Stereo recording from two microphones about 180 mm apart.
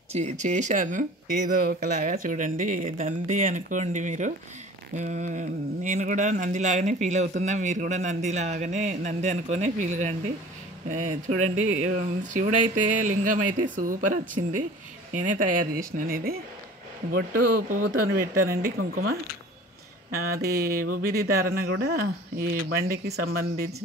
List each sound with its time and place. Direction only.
0.1 s speech: 40° right (ahead or behind); by 23.7 s 60° right (ahead or behind)